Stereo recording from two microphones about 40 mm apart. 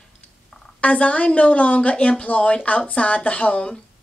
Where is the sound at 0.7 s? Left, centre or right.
Left.